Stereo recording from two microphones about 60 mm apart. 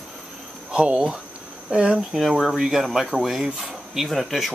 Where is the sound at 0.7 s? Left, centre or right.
Centre.